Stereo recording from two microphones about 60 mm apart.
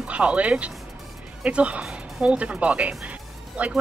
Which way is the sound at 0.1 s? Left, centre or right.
Right.